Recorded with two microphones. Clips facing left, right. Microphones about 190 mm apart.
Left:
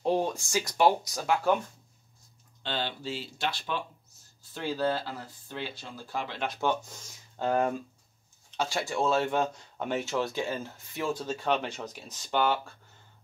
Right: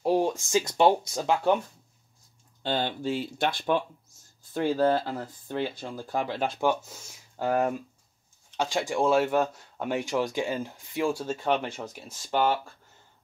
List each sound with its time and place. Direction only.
0.0 s speech: 10° right (ahead or behind)
2.6 s speech: 50° right (ahead or behind)
6.6 s speech: 10° right (ahead or behind)